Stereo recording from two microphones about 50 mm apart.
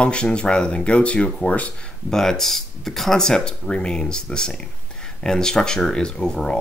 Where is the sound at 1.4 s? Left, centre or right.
Left.